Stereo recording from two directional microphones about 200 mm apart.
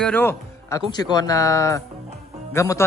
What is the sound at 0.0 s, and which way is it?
Speech, 10° left (ahead or behind).